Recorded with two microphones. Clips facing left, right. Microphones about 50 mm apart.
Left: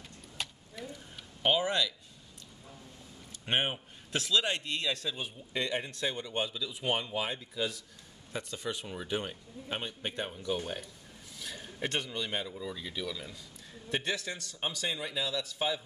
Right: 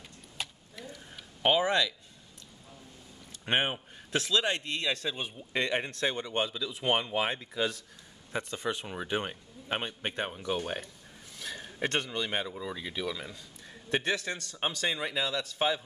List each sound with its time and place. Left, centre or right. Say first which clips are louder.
0.4 s a sound: even; centre
1.4 s speech: right 3 dB; centre
3.5 s speech: right 2 dB; centre
4.4 s a man's voice: right 2 dB; right
8.3 s a man's voice: right 4 dB; right
12.5 s speech: right 2 dB; right
13.9 s a man's voice: right 4 dB; right